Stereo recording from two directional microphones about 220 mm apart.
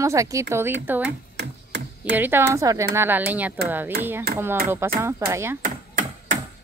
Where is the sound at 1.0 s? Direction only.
50° right (ahead or behind).